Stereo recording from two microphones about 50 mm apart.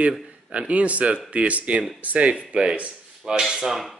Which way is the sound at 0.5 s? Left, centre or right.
Right.